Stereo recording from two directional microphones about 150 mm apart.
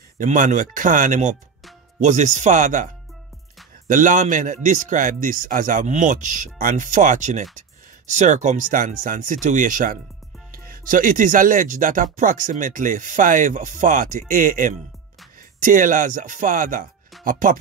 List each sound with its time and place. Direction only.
0.2 s speech: 55° right (ahead or behind)